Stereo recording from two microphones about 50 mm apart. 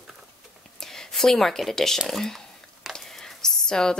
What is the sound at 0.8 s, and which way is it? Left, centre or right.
Speech, centre.